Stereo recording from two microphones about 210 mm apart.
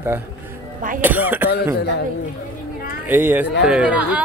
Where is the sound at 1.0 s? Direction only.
10° right (ahead or behind).